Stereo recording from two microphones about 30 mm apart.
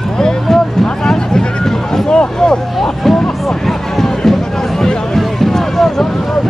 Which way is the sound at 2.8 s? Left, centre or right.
Centre.